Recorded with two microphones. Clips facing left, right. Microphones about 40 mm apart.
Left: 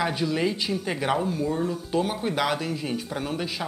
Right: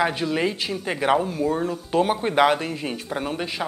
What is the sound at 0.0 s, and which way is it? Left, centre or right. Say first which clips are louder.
Speech: right 3 dB; right.